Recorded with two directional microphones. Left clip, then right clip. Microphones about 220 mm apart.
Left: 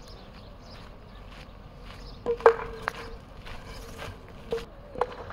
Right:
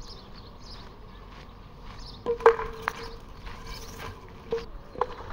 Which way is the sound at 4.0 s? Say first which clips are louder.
Even; 45° left (ahead or behind).